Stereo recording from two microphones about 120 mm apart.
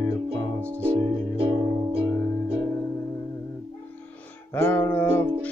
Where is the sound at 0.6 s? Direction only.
10° left (ahead or behind).